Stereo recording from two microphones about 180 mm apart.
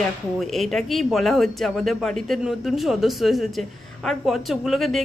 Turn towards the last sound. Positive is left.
turn(degrees=0)  # may be behind; listen again after turning